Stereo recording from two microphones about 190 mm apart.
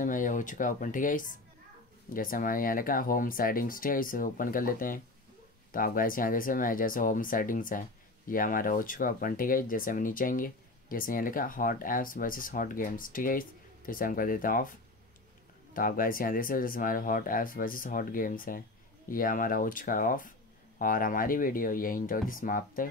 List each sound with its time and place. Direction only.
0.0 s speech: 45° left (ahead or behind)
15.7 s speech: 45° left (ahead or behind)